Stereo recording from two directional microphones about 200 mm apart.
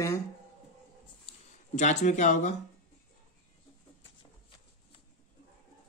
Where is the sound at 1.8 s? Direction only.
35° left (ahead or behind).